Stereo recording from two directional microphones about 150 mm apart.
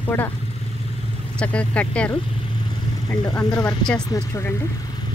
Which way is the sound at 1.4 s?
10° left (ahead or behind).